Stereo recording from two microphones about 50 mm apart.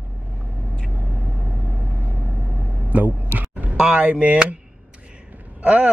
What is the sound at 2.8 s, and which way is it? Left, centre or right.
Vehicle, right.